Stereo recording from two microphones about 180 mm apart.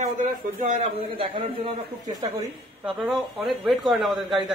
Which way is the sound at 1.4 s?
25° right (ahead or behind).